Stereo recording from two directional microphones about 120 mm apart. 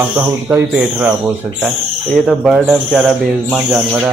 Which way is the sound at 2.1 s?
5° right (ahead or behind).